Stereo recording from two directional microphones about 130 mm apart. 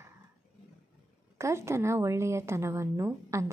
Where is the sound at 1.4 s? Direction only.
20° right (ahead or behind).